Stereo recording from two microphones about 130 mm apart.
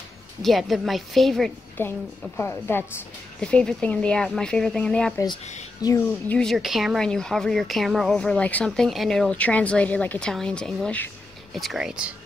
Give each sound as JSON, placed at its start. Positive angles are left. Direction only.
{"t": 0.4, "sound": "a woman's voice", "side_deg": 0}
{"t": 1.8, "sound": "speech", "side_deg": 15}
{"t": 5.8, "sound": "speech", "side_deg": 30}
{"t": 6.2, "sound": "a woman's voice", "side_deg": 5}